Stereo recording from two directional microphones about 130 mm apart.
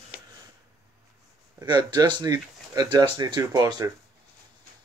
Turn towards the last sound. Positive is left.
turn(degrees=-30)  # may be behind; listen again after turning